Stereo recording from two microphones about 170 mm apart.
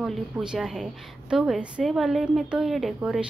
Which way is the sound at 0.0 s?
Centre (ahead or behind).